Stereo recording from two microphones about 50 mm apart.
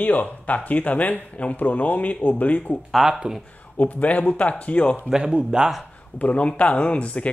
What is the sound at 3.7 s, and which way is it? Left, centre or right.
Speech, left.